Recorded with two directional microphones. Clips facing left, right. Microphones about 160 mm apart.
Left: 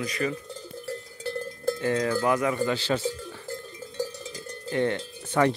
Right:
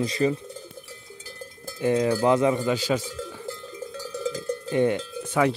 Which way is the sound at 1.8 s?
20° right (ahead or behind).